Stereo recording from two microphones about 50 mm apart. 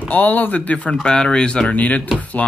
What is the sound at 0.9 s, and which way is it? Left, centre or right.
Speech, centre.